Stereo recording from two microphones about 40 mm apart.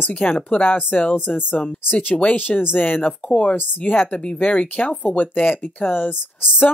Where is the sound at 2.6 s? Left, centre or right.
Left.